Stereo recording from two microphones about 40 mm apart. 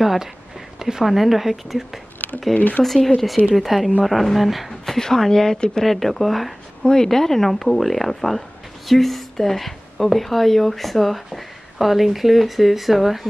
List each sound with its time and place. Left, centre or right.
0.0 s speech: centre
0.7 s a sound: centre
1.0 s speech: centre
2.5 s speech: left
2.8 s speech: centre
4.8 s speech: centre
6.8 s speech: centre